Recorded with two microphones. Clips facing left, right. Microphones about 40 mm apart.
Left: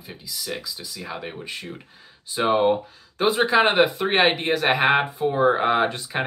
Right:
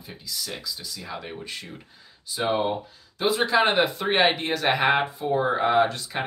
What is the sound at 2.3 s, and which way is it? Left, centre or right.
Speech, left.